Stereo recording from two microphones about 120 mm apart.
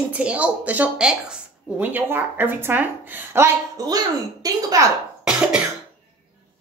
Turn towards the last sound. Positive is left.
turn(degrees=-5)  # may be behind; listen again after turning